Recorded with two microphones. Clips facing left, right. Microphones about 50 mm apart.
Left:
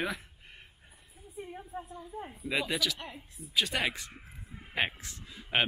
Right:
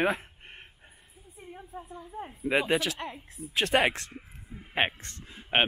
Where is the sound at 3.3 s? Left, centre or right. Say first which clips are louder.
Right 6 dB; right.